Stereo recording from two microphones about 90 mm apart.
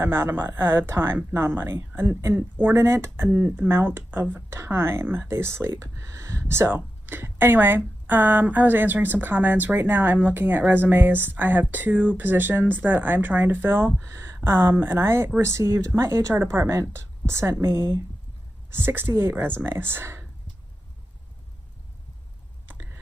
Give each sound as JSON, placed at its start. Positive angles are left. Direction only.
{"t": 0.0, "sound": "speech", "side_deg": -30}
{"t": 3.3, "sound": "speech", "side_deg": -20}
{"t": 14.0, "sound": "speech", "side_deg": -35}